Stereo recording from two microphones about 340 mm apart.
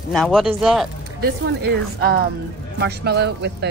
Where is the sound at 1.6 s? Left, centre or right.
Right.